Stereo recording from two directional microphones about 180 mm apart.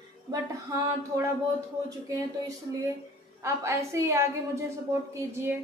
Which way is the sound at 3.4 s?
15° right (ahead or behind).